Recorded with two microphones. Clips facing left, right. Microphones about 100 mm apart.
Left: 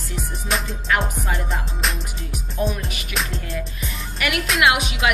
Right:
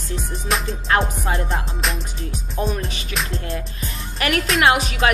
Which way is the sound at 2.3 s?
35° right (ahead or behind).